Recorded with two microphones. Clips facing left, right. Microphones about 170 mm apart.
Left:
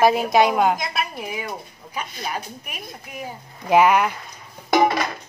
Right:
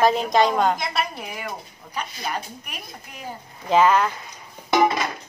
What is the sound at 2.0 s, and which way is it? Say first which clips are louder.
A woman's voice: even; 10° left (ahead or behind).